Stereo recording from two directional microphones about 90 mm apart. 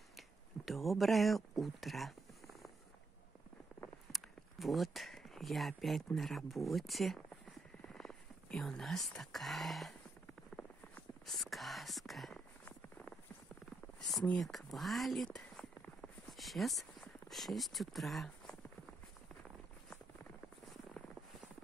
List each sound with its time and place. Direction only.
0.7 s speech: centre (ahead or behind)
4.1 s speech: centre (ahead or behind)
11.2 s speech: centre (ahead or behind)
12.4 s a sound: 20° left (ahead or behind)
14.4 s speech: centre (ahead or behind)
15.2 s clip-clop: 10° left (ahead or behind)